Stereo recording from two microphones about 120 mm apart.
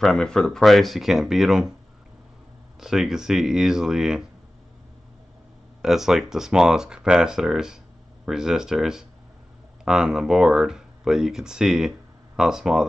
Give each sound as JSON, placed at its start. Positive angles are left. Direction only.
{"t": 0.0, "sound": "speech", "side_deg": 5}
{"t": 2.8, "sound": "speech", "side_deg": -5}
{"t": 5.8, "sound": "speech", "side_deg": -5}